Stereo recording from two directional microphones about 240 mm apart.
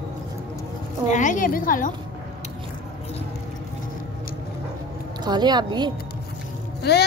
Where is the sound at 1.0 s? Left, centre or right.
Left.